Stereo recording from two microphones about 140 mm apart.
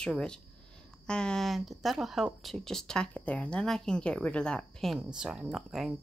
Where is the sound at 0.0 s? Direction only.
5° left (ahead or behind).